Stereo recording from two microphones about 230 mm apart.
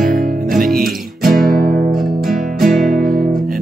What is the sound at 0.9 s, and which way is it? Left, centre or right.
Music, centre.